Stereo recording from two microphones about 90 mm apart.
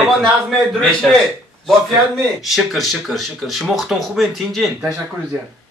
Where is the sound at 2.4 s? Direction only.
5° right (ahead or behind).